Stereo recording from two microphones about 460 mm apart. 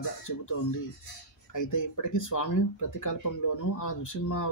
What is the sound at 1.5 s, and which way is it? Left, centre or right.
Speech, left.